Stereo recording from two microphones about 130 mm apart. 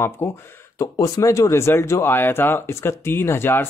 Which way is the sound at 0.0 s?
20° left (ahead or behind).